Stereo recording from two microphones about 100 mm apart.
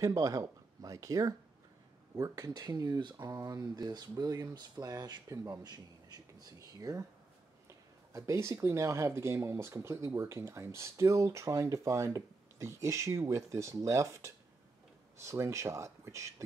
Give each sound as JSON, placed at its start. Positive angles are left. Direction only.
{"t": 0.0, "sound": "speech", "side_deg": -35}
{"t": 3.2, "sound": "speech", "side_deg": -35}
{"t": 8.1, "sound": "speech", "side_deg": -30}